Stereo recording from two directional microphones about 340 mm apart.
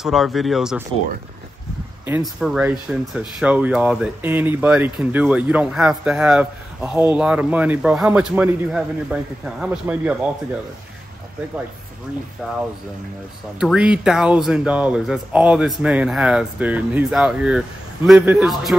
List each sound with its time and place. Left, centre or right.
0.0 s speech: centre
2.0 s speech: centre
13.6 s speech: centre